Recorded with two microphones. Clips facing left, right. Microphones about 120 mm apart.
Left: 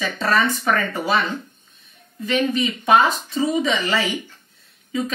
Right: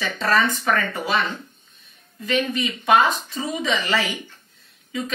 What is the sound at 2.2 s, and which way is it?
Speech, 30° left (ahead or behind).